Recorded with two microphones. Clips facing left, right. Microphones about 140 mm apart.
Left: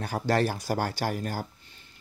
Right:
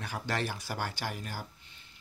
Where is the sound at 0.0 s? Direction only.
40° left (ahead or behind).